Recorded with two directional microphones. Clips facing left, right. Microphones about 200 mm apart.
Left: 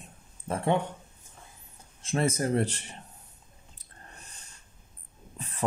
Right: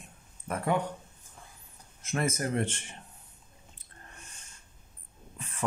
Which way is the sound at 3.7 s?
35° left (ahead or behind).